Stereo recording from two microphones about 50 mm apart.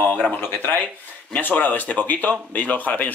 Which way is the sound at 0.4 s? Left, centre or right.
Left.